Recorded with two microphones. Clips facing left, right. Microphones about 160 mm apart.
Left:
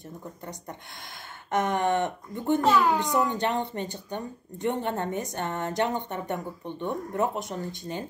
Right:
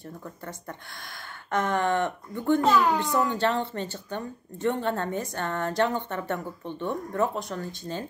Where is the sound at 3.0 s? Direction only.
20° left (ahead or behind).